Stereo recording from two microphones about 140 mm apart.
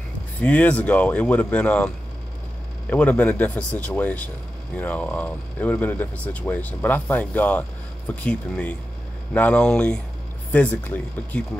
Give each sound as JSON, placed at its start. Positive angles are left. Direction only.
{"t": 0.4, "sound": "speech", "side_deg": 10}
{"t": 2.9, "sound": "speech", "side_deg": 10}